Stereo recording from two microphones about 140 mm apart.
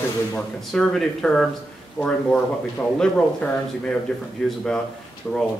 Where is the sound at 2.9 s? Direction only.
10° left (ahead or behind).